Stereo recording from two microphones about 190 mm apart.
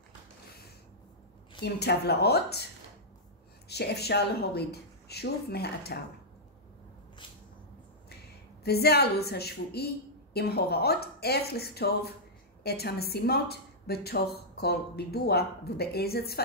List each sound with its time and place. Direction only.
1.6 s a woman's voice: 60° left (ahead or behind)
8.6 s a woman's voice: 55° left (ahead or behind)